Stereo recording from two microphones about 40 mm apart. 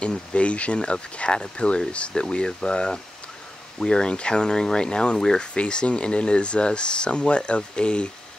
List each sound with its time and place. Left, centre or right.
0.0 s speech: left